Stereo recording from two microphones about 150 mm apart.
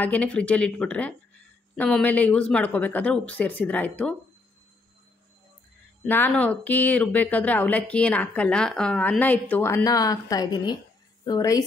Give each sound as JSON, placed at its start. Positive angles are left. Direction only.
{"t": 0.0, "sound": "speech", "side_deg": 10}
{"t": 6.0, "sound": "a woman's voice", "side_deg": 10}